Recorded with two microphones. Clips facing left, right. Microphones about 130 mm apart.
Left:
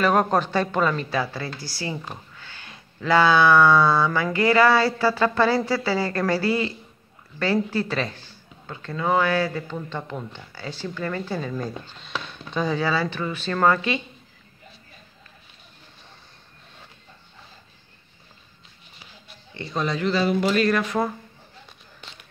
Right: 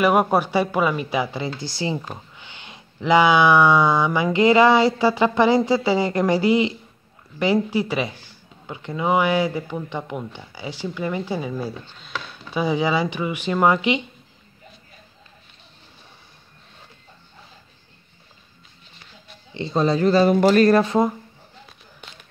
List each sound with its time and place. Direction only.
0.0 s speech: 10° right (ahead or behind)
19.5 s speech: 30° right (ahead or behind)